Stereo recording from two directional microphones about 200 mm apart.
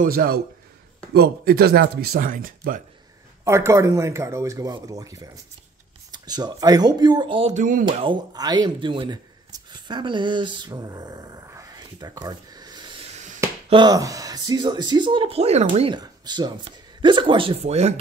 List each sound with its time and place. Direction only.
0.0 s speech: 45° right (ahead or behind)
3.4 s speech: 15° right (ahead or behind); by 7.8 s 40° right (ahead or behind)
7.9 s speech: 25° right (ahead or behind)